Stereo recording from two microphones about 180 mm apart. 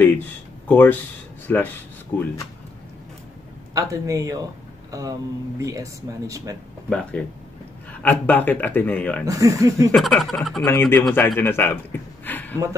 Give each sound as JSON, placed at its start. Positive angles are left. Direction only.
{"t": 0.7, "sound": "speech", "side_deg": 10}
{"t": 3.7, "sound": "speech", "side_deg": -20}
{"t": 5.6, "sound": "speech", "side_deg": -20}
{"t": 6.9, "sound": "speech", "side_deg": 5}
{"t": 9.2, "sound": "speech", "side_deg": -20}
{"t": 9.8, "sound": "speech", "side_deg": 0}
{"t": 10.6, "sound": "speech", "side_deg": 10}